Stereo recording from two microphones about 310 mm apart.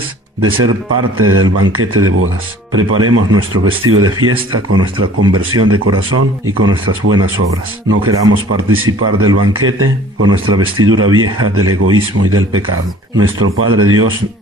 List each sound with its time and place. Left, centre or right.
0.4 s speech: right